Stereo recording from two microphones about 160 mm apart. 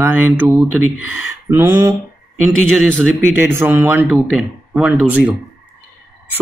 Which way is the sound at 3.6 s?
15° right (ahead or behind).